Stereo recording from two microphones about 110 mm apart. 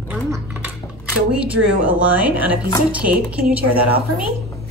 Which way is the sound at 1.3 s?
10° right (ahead or behind).